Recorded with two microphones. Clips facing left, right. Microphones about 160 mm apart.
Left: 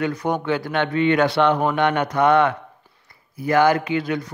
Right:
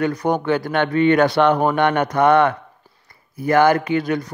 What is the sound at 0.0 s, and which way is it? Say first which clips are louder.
Speech: right 3 dB; 40° right (ahead or behind).